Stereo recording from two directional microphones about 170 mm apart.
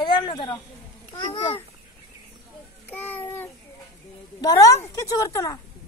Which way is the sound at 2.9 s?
10° left (ahead or behind).